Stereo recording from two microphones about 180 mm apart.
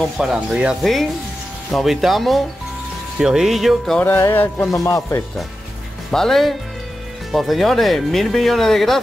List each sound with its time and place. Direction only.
0.2 s speech: 5° right (ahead or behind); by 5.2 s 15° left (ahead or behind)
6.1 s speech: centre (ahead or behind)